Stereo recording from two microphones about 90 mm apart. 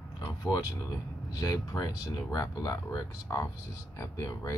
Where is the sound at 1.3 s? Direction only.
45° left (ahead or behind).